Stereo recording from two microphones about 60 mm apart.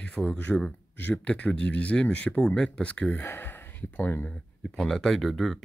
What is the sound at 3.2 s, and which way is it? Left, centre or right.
Speech, left.